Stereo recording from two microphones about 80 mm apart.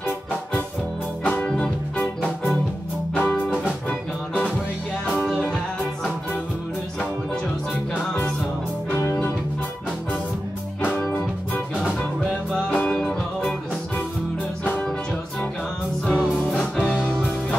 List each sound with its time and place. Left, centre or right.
1.2 s music: centre
3.2 s music: centre
5.1 s music: centre
7.7 s music: left
12.2 s music: centre
14.6 s music: centre
16.1 s music: centre
17.0 s music: centre